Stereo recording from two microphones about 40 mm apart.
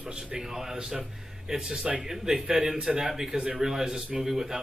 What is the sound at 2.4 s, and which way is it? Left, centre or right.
A man's voice, right.